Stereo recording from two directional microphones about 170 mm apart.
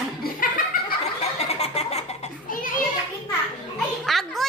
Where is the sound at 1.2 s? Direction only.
40° left (ahead or behind).